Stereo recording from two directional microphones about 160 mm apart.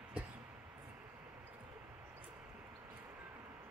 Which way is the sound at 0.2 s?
5° right (ahead or behind).